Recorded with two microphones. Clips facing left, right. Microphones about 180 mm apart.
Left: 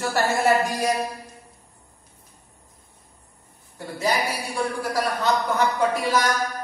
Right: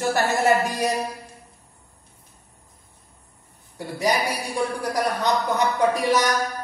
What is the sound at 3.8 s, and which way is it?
Speech, 15° right (ahead or behind).